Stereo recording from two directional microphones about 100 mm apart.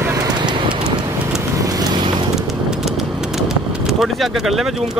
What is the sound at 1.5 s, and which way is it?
Vehicle, 40° right (ahead or behind).